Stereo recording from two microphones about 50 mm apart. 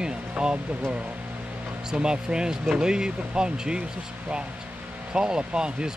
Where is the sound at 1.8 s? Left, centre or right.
Centre.